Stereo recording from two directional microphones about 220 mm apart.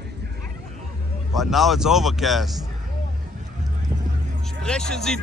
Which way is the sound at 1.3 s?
Centre (ahead or behind).